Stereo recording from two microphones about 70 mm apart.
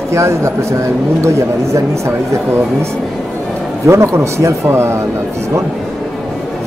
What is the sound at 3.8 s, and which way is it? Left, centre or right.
Speech, right.